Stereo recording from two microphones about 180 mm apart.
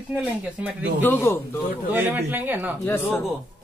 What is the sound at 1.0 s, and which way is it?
Speech, 10° left (ahead or behind).